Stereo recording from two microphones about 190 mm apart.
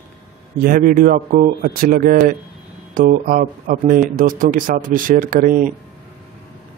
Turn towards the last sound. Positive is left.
turn(degrees=-45)  # may be behind; listen again after turning